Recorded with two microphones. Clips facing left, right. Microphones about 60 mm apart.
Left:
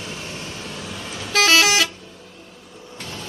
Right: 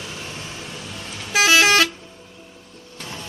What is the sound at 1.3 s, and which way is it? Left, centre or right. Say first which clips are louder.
Vehicle: even; centre.